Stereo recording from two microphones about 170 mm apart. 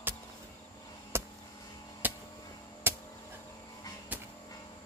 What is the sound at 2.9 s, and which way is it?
Music, 15° right (ahead or behind).